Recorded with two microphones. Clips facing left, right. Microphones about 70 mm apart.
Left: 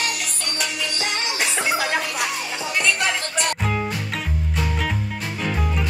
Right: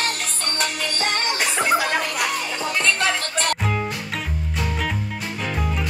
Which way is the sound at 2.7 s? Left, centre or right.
Centre.